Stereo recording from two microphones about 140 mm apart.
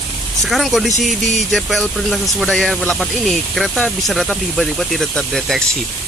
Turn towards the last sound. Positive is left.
turn(degrees=0)  # may be behind; listen again after turning